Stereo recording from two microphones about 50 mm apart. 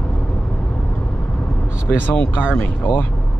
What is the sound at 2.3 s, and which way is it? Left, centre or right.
Speech, left.